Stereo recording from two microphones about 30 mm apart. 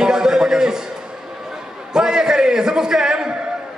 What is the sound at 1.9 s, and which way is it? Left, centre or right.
A man's voice, right.